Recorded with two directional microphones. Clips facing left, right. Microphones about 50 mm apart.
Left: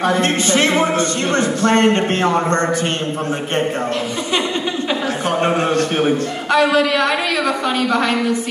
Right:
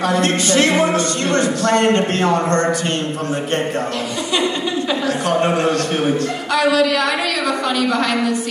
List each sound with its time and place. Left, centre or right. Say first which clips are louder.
0.0 s speech: left 1 dB; left
5.2 s speech: even; left